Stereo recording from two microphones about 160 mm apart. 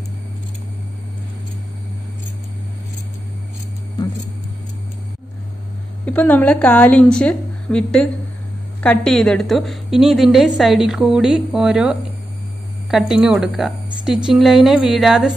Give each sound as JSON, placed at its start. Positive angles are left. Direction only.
{"t": 6.0, "sound": "a woman's voice", "side_deg": 10}